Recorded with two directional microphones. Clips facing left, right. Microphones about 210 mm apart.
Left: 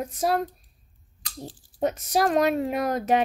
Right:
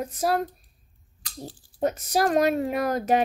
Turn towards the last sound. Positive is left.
turn(degrees=0)  # may be behind; listen again after turning